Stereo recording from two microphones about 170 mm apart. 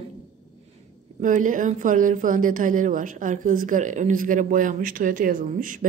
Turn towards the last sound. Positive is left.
turn(degrees=-55)  # may be behind; listen again after turning